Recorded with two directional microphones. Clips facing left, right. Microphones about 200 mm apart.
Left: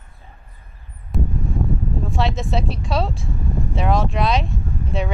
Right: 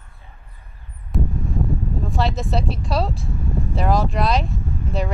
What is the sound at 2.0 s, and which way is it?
Speech, centre (ahead or behind).